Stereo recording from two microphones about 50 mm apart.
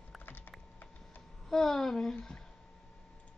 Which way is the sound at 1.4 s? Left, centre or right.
Centre.